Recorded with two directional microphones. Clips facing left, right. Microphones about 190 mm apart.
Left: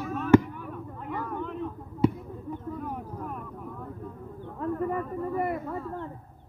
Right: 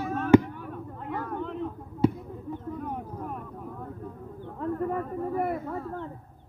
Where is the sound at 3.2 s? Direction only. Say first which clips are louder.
Even; 35° right (ahead or behind).